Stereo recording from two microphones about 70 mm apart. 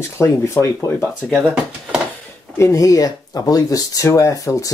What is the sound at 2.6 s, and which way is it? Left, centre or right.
Speech, left.